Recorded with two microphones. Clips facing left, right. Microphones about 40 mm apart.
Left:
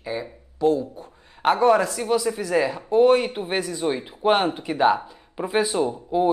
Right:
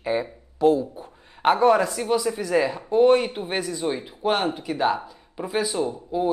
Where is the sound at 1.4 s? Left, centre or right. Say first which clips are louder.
Even; centre.